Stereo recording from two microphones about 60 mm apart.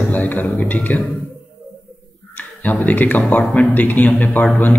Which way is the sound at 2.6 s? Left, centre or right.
Left.